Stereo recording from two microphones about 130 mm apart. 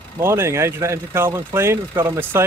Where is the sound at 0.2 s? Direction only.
20° right (ahead or behind).